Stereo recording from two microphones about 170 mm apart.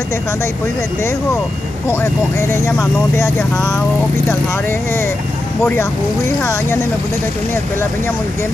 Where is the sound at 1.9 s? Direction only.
15° left (ahead or behind).